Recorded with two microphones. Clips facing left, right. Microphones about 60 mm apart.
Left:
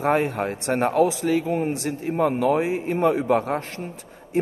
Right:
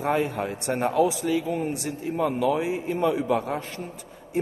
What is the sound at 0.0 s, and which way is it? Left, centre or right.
Speech, left.